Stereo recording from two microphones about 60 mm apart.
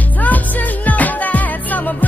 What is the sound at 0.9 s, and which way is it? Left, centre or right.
Music, left.